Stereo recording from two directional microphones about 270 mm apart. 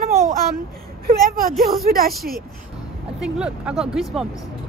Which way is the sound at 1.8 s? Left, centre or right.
Right.